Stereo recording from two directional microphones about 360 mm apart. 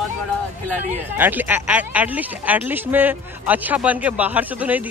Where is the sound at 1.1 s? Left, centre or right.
Centre.